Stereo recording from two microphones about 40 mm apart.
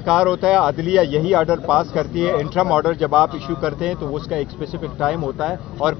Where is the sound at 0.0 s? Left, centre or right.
Centre.